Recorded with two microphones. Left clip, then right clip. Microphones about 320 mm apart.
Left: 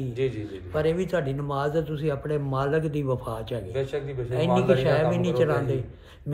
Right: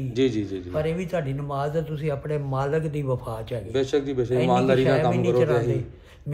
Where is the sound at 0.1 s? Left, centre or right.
Right.